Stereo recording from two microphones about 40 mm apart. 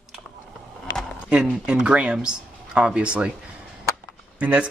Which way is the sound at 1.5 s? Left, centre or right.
Right.